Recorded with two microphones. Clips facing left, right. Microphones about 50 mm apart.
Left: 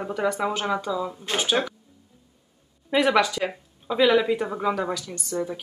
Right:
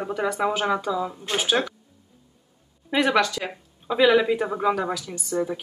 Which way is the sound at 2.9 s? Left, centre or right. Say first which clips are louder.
Left 1 dB; centre.